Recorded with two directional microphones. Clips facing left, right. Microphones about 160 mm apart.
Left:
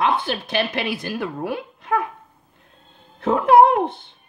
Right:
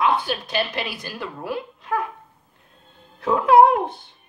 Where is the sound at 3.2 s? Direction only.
60° left (ahead or behind).